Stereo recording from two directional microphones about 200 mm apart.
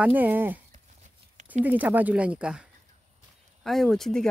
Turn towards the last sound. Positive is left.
turn(degrees=0)  # may be behind; listen again after turning